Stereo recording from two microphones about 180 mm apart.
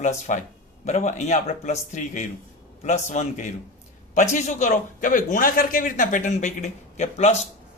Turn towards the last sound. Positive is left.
turn(degrees=40)  # may be behind; listen again after turning